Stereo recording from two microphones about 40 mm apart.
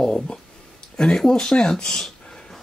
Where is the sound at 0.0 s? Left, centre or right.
Centre.